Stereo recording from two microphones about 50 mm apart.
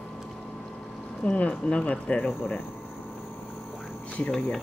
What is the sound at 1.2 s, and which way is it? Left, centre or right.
Speech, left.